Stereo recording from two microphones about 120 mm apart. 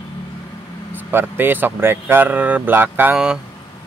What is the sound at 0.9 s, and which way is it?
Speech, 15° right (ahead or behind).